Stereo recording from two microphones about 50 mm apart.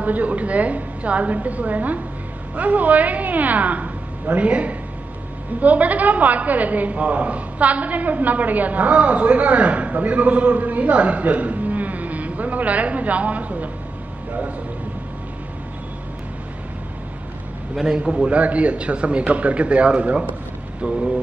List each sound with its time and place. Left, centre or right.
0.0 s a woman's voice: right
17.7 s a man's voice: centre
20.8 s speech: centre